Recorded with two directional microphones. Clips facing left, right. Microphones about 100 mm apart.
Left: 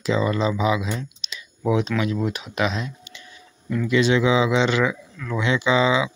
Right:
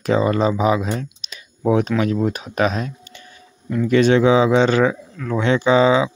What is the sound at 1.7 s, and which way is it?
Speech, 45° right (ahead or behind).